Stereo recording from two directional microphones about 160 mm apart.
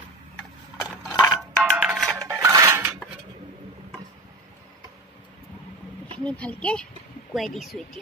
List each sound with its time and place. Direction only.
1.2 s music: centre (ahead or behind)
2.1 s music: 20° right (ahead or behind)
6.1 s a child's voice: 10° left (ahead or behind)